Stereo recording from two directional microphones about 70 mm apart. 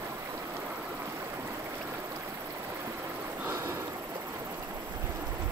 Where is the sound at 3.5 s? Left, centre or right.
Right.